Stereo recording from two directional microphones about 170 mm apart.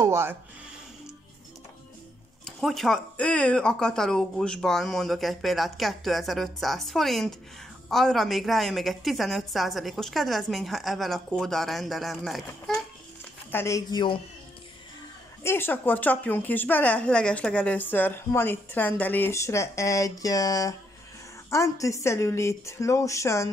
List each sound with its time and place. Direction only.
0.0 s speech: 15° right (ahead or behind)
2.4 s speech: centre (ahead or behind)
13.5 s speech: 15° left (ahead or behind)
15.4 s a woman's voice: 15° left (ahead or behind)